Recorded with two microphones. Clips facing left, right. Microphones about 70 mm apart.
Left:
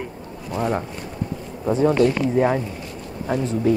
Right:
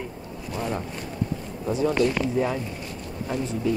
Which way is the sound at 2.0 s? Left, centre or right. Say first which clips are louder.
Left 5 dB; left.